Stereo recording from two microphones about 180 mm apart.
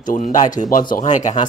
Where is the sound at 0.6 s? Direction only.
50° left (ahead or behind).